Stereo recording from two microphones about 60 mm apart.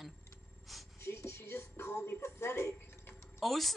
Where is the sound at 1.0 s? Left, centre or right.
Left.